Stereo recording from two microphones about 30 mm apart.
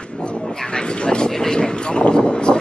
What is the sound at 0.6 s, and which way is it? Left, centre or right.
Speech, left.